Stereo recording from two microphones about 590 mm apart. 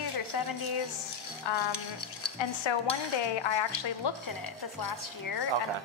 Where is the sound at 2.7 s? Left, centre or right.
Left.